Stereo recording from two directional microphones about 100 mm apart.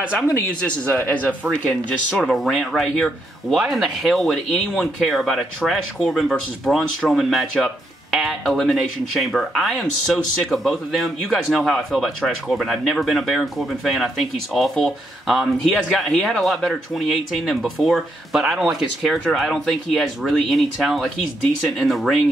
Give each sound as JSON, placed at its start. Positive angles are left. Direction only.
{"t": 0.8, "sound": "speech", "side_deg": 15}
{"t": 2.0, "sound": "speech", "side_deg": -5}